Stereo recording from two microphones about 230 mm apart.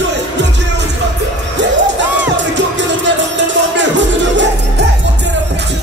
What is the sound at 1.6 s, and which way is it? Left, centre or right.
Music, right.